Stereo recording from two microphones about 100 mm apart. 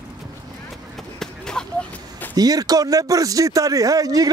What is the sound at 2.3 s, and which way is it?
Speech, 40° right (ahead or behind).